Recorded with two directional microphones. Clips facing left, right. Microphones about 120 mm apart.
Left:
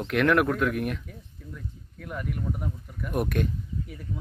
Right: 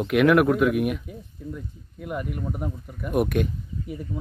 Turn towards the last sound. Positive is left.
turn(degrees=-10)  # may be behind; listen again after turning